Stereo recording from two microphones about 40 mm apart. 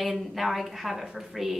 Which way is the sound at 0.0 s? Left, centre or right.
Centre.